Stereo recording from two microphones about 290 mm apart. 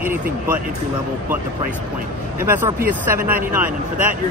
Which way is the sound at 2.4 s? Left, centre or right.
Centre.